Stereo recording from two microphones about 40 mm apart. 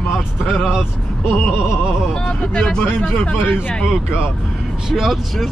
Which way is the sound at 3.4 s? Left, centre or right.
Left.